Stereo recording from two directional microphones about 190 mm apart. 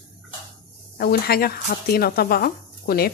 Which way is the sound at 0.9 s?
55° left (ahead or behind).